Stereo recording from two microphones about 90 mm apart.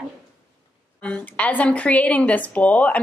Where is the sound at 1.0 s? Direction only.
15° left (ahead or behind).